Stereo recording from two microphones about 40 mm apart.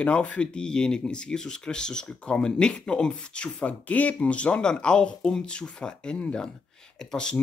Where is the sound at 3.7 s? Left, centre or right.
Left.